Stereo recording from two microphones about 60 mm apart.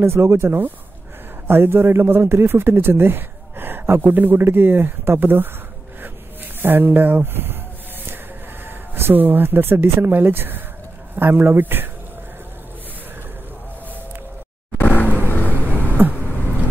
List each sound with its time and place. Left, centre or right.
0.0 s a man's voice: right
6.6 s a man's voice: right
8.6 s a man's voice: right
14.8 s vehicle: left
15.7 s a sound: right